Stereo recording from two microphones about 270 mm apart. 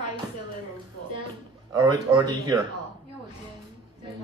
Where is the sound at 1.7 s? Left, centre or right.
Centre.